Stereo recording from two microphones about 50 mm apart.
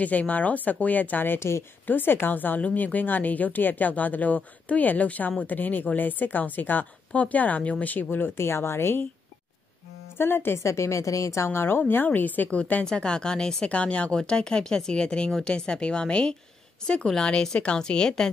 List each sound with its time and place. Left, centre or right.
0.0 s speech: left
8.4 s speech: left
10.1 s speech: left
10.6 s a woman's voice: left
11.9 s a woman's voice: left; by 13.7 s centre
13.7 s speech: left